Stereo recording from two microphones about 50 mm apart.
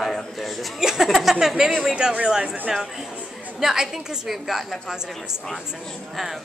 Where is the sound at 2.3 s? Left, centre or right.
Right.